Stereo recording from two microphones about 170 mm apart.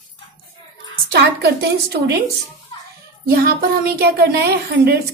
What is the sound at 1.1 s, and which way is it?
Speech, 70° right (ahead or behind).